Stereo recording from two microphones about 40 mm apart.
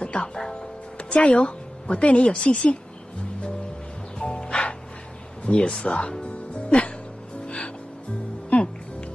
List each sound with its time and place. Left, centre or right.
0.0 s music: left
0.6 s music: left
2.5 s speech: left
4.2 s music: left
5.4 s speech: left
6.2 s music: left